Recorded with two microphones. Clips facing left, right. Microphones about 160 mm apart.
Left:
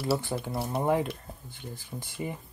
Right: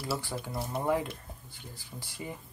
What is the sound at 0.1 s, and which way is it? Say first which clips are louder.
Speech: left 6 dB; 25° left (ahead or behind).